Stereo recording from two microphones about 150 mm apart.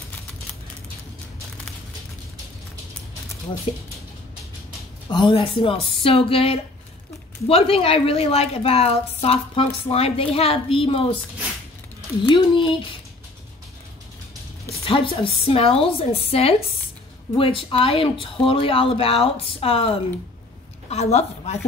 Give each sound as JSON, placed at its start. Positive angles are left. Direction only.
{"t": 5.1, "sound": "a woman's voice", "side_deg": 35}
{"t": 12.3, "sound": "a woman's voice", "side_deg": 30}
{"t": 14.9, "sound": "a woman's voice", "side_deg": 35}